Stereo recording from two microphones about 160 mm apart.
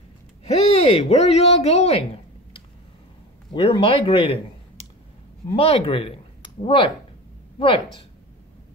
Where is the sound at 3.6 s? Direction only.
35° left (ahead or behind).